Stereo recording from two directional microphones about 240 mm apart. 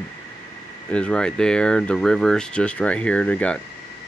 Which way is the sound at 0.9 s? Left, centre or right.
Centre.